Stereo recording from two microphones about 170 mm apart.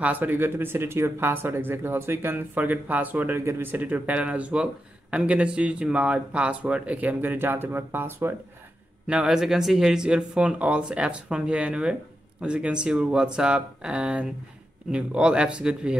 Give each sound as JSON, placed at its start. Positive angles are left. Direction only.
{"t": 0.0, "sound": "speech", "side_deg": -10}